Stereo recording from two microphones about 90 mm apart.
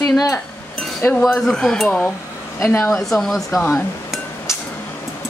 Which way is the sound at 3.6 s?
15° left (ahead or behind).